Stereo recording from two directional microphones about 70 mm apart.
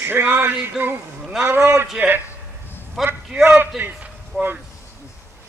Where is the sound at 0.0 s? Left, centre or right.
Right.